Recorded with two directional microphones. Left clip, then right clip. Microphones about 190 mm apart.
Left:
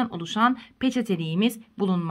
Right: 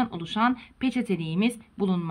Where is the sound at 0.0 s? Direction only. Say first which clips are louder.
Left 2 dB; 35° left (ahead or behind).